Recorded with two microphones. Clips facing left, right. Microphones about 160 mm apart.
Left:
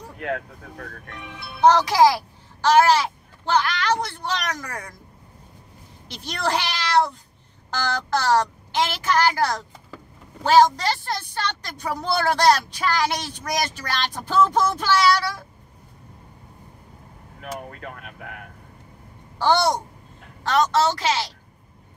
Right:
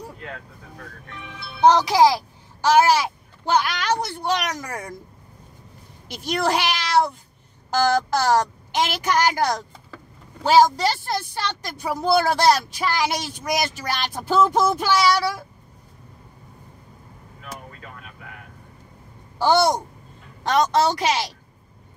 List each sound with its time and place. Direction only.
0.2 s speech: 60° left (ahead or behind)
1.7 s a child's voice: 15° right (ahead or behind)
6.0 s speech: 10° right (ahead or behind)
17.4 s vehicle: 55° left (ahead or behind)
19.3 s speech: 10° right (ahead or behind)